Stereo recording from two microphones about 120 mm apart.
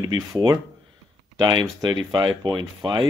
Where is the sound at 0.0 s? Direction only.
30° right (ahead or behind).